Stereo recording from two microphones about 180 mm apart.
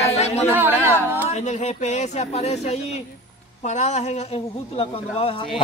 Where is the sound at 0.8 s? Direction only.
10° right (ahead or behind).